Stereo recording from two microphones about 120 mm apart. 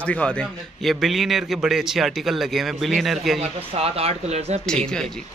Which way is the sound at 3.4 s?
55° right (ahead or behind).